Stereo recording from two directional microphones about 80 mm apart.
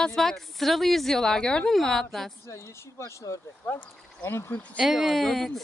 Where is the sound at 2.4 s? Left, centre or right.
Left.